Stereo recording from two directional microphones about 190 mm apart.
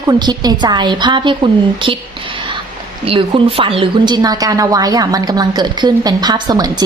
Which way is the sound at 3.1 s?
30° right (ahead or behind).